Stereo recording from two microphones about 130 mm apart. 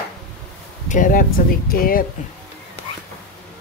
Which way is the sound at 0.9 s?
90° left.